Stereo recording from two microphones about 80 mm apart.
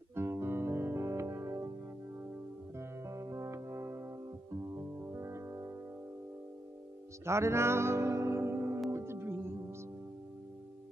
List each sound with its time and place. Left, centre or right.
0.1 s music: right
2.8 s music: right
7.2 s music: right